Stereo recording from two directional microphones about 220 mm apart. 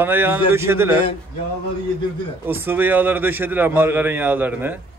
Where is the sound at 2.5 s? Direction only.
10° right (ahead or behind).